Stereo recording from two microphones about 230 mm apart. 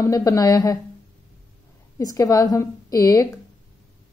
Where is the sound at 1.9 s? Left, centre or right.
Centre.